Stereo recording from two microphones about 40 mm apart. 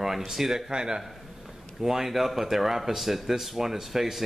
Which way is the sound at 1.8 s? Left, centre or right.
Centre.